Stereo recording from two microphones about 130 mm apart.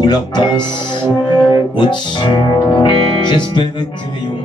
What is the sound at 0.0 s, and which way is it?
Music, 35° left (ahead or behind).